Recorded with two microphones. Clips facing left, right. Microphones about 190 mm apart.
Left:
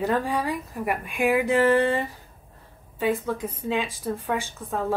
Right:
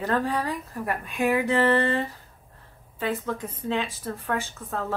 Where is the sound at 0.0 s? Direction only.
10° left (ahead or behind).